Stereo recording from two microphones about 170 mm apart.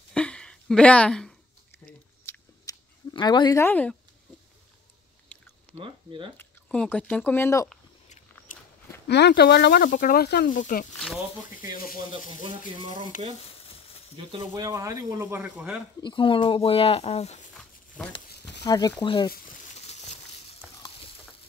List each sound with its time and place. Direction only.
0.1 s a sound: 5° left (ahead or behind)
2.2 s chewing: 25° left (ahead or behind)
3.5 s speech: 10° left (ahead or behind)
5.3 s chewing: 5° left (ahead or behind)
5.8 s speech: 30° right (ahead or behind)
6.3 s speech: 10° left (ahead or behind)
9.0 s speech: 75° left (ahead or behind)
10.5 s speech: 50° left (ahead or behind)
12.8 s speech: 50° right (ahead or behind)
13.7 s a sound: 35° left (ahead or behind)
14.1 s speech: 30° right (ahead or behind); by 15.8 s 5° right (ahead or behind)
16.0 s speech: 30° left (ahead or behind)
18.6 s speech: 20° left (ahead or behind)
19.9 s crushing: 40° left (ahead or behind)